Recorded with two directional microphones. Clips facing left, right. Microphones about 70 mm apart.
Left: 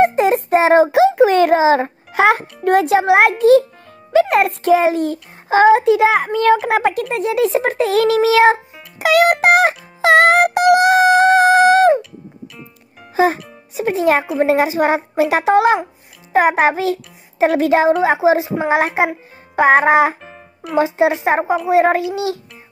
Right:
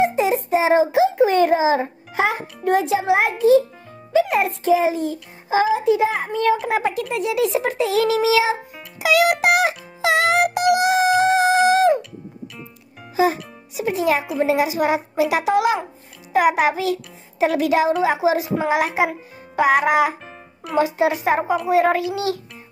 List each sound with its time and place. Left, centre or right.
0.0 s child singing: left
4.1 s a child's voice: left
7.0 s a child's voice: left
11.1 s music: left
13.1 s a child's voice: left